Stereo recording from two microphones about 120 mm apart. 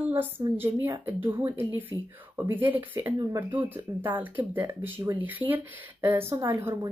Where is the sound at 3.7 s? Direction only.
15° right (ahead or behind).